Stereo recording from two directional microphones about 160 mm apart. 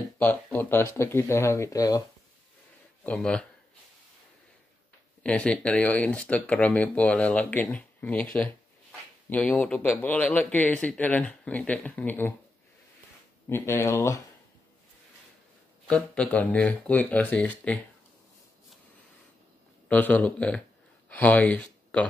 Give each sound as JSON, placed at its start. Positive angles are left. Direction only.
{"t": 0.2, "sound": "speech", "side_deg": 10}
{"t": 3.0, "sound": "speech", "side_deg": 5}
{"t": 5.2, "sound": "speech", "side_deg": 5}
{"t": 13.5, "sound": "speech", "side_deg": 15}
{"t": 15.9, "sound": "speech", "side_deg": 5}
{"t": 19.9, "sound": "speech", "side_deg": 10}